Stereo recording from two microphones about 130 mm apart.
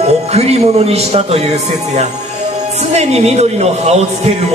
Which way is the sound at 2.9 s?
55° right (ahead or behind).